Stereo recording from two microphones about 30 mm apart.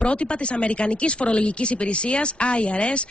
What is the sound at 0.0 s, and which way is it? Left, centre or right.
Speech, left.